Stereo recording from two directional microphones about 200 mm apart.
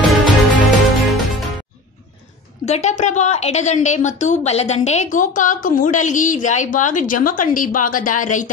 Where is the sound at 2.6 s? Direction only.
35° left (ahead or behind).